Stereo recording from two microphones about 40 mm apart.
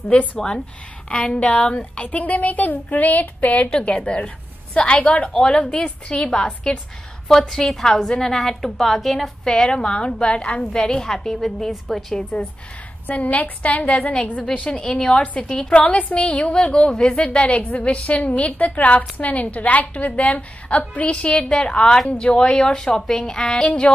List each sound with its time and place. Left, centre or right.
0.1 s a woman's voice: left
1.0 s a woman's voice: left
3.8 s a woman's voice: left
7.2 s a woman's voice: centre
9.4 s a woman's voice: centre
13.1 s a woman's voice: left
16.9 s a woman's voice: centre
17.2 s a woman's voice: left